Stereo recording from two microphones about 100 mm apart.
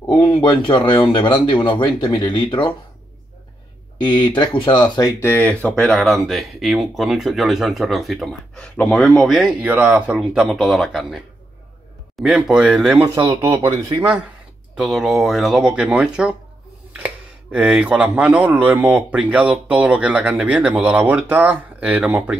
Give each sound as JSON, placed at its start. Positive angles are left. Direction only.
{"t": 0.0, "sound": "speech", "side_deg": 50}
{"t": 4.0, "sound": "speech", "side_deg": 50}
{"t": 5.0, "sound": "speech", "side_deg": 20}
{"t": 5.9, "sound": "speech", "side_deg": 0}
{"t": 13.1, "sound": "speech", "side_deg": -25}
{"t": 14.8, "sound": "speech", "side_deg": 0}